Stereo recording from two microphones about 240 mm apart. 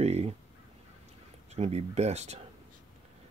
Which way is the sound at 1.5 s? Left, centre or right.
Right.